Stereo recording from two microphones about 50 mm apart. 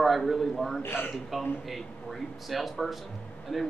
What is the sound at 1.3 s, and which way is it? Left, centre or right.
A man's voice, centre.